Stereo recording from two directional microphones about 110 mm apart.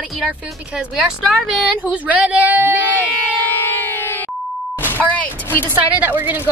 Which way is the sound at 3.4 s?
20° left (ahead or behind).